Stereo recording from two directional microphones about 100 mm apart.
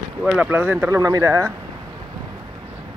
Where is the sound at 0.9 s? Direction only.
35° right (ahead or behind).